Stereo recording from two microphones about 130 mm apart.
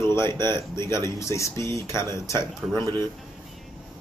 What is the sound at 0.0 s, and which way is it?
Speech, 20° left (ahead or behind).